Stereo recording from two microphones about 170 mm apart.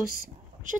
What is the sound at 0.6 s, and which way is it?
Speech, 50° right (ahead or behind).